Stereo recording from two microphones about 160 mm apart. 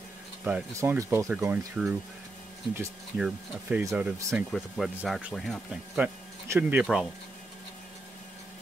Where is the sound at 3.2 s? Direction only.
10° right (ahead or behind).